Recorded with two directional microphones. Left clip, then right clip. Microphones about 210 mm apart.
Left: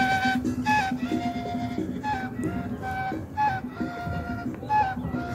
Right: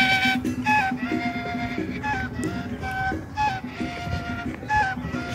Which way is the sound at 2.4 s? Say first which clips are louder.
Right 1 dB; 5° left (ahead or behind).